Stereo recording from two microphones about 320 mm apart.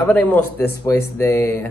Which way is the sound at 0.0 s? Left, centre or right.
Centre.